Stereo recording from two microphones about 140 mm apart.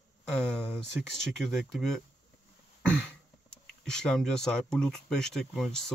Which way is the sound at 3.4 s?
5° left (ahead or behind).